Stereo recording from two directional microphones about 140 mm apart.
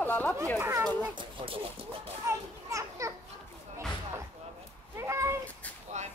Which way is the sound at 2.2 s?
20° right (ahead or behind).